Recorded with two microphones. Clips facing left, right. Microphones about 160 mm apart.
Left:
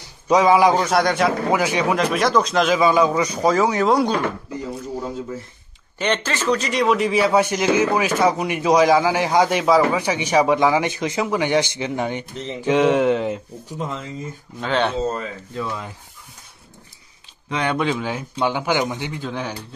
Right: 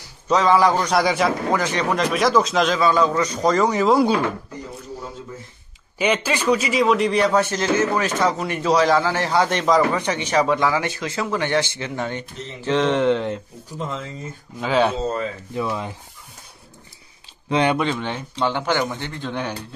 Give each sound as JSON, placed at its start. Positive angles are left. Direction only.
{"t": 0.3, "sound": "speech", "side_deg": 10}
{"t": 1.5, "sound": "speech", "side_deg": 10}
{"t": 2.8, "sound": "a man's voice", "side_deg": 10}
{"t": 5.9, "sound": "a man's voice", "side_deg": -10}
{"t": 15.5, "sound": "speech", "side_deg": -15}
{"t": 17.7, "sound": "a man's voice", "side_deg": 5}